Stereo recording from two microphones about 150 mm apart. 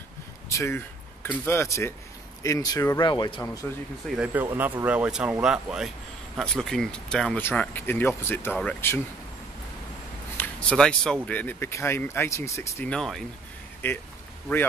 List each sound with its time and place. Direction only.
0.5 s speech: 20° left (ahead or behind)
4.2 s speech: 15° right (ahead or behind); by 9.0 s 10° left (ahead or behind)
10.3 s a sound: 10° left (ahead or behind)
11.2 s speech: 10° left (ahead or behind)
12.9 s speech: centre (ahead or behind)
13.8 s speech: 15° left (ahead or behind)